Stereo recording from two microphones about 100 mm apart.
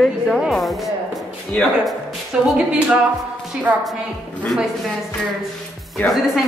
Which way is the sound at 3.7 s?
15° right (ahead or behind).